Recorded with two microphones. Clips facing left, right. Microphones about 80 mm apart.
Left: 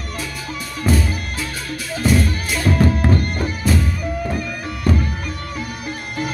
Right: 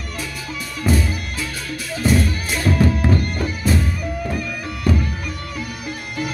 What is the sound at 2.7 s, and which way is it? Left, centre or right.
Music, left.